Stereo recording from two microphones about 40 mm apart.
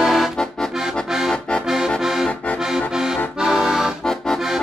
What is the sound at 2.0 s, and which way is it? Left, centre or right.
Accordion, centre.